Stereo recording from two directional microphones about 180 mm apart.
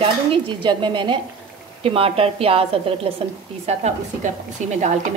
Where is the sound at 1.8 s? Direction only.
30° right (ahead or behind).